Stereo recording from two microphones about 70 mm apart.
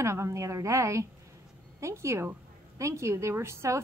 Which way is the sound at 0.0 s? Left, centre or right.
Right.